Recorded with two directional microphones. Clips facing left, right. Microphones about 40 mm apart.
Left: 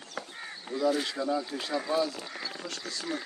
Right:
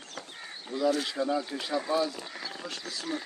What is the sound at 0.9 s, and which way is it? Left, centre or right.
Speech, centre.